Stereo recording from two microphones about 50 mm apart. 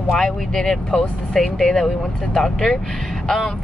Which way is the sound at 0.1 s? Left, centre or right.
Centre.